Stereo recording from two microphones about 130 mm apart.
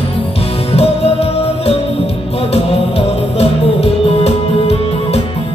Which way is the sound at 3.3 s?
50° left (ahead or behind).